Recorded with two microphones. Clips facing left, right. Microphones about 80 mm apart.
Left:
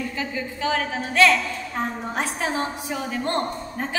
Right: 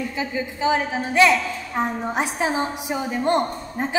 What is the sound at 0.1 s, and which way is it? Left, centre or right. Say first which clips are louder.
A woman's voice: right 2 dB; centre.